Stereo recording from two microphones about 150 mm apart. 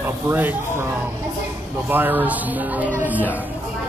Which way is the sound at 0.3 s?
10° right (ahead or behind).